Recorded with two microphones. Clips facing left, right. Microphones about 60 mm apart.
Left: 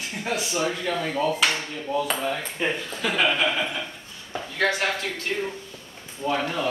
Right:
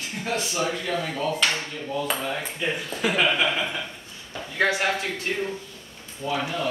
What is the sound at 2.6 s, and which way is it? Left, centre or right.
Speech, left.